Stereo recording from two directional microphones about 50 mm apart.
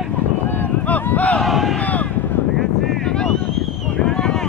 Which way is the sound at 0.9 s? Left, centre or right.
Left.